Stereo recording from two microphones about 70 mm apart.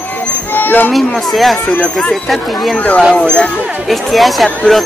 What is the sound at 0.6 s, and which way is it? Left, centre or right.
Speech, left.